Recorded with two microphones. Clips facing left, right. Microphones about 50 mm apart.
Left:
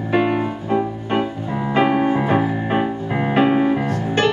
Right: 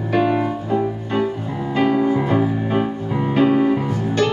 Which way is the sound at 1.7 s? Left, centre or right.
Left.